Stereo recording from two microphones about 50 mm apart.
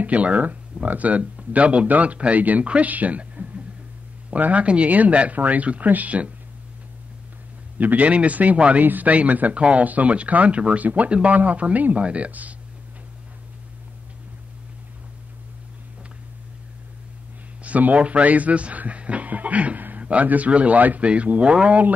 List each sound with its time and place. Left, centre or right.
0.0 s speech: right
7.7 s speech: right
17.6 s speech: right